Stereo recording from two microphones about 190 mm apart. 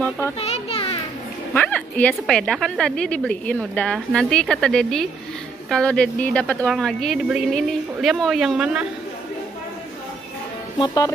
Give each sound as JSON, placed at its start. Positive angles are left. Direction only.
{"t": 0.4, "sound": "children playing", "side_deg": 30}
{"t": 1.5, "sound": "a woman's voice", "side_deg": 10}
{"t": 10.8, "sound": "music", "side_deg": 20}